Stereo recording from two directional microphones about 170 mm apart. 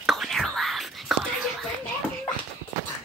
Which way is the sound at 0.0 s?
Centre (ahead or behind).